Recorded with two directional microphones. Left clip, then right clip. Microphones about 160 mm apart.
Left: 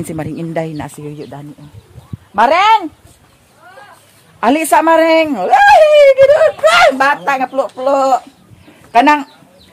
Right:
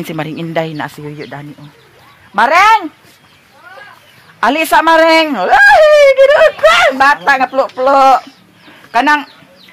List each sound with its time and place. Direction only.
0.2 s speech: 15° left (ahead or behind)
2.3 s speech: 25° right (ahead or behind)
4.4 s speech: 15° left (ahead or behind); by 8.0 s 15° right (ahead or behind)
8.9 s speech: 10° left (ahead or behind)